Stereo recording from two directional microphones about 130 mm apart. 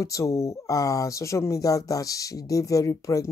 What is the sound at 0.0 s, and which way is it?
Speech, 25° left (ahead or behind).